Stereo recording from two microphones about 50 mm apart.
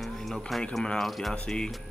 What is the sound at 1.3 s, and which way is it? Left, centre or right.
Speech, centre.